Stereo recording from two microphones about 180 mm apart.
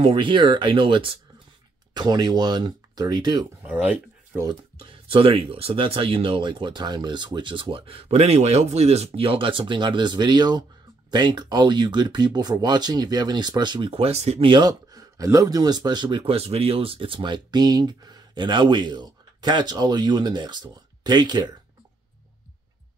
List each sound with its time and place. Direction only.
0.0 s speech: 25° right (ahead or behind)
3.6 s speech: 10° right (ahead or behind)
4.5 s speech: 30° right (ahead or behind)